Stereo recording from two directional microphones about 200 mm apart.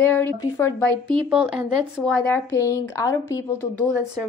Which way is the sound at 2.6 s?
15° left (ahead or behind).